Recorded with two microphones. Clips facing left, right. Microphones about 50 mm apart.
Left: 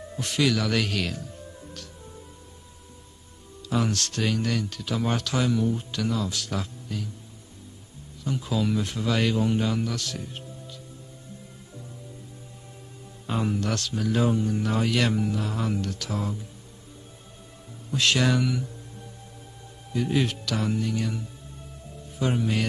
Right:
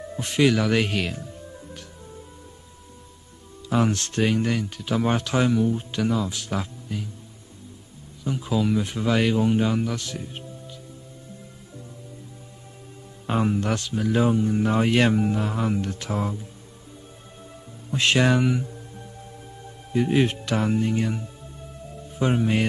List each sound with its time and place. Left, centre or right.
0.2 s speech: right
3.6 s speech: right
5.6 s speech: centre
5.9 s speech: right
8.2 s speech: centre
13.5 s speech: right
17.9 s speech: right
19.9 s speech: right